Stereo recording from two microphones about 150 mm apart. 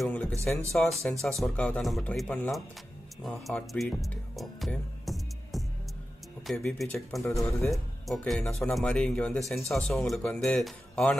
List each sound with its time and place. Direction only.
0.0 s speech: 10° left (ahead or behind)
7.2 s speech: 20° left (ahead or behind)
7.7 s speech: centre (ahead or behind)